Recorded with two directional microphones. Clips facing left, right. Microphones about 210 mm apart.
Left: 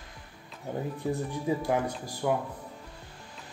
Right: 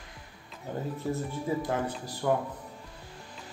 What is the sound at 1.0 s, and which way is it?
A man's voice, 15° left (ahead or behind).